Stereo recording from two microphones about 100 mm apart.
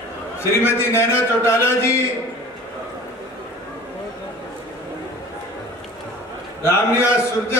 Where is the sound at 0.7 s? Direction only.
25° left (ahead or behind).